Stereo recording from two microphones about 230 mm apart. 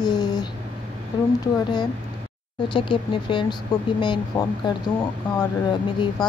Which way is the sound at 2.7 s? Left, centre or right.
Left.